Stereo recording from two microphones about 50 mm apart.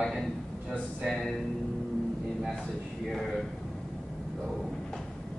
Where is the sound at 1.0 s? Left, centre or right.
Centre.